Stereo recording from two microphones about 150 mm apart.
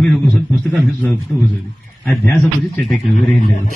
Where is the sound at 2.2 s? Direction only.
15° left (ahead or behind).